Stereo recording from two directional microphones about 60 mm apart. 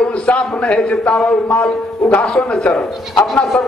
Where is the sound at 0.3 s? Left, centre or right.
Centre.